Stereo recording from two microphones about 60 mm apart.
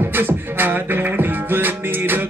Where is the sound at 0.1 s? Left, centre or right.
Right.